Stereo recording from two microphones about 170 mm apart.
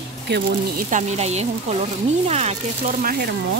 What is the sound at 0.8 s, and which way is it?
A woman's voice, 45° right (ahead or behind).